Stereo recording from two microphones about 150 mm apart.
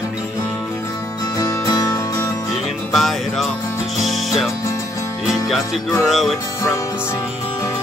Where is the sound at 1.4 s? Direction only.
25° left (ahead or behind).